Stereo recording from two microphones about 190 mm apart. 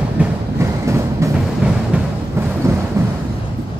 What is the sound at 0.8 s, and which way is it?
Music, 15° right (ahead or behind).